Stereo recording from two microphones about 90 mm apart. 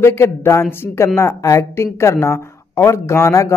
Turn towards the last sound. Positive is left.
turn(degrees=30)  # may be behind; listen again after turning